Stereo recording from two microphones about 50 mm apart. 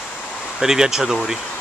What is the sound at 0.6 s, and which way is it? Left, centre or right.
Speech, centre.